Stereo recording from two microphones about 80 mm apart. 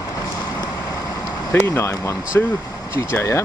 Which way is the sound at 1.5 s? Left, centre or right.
Left.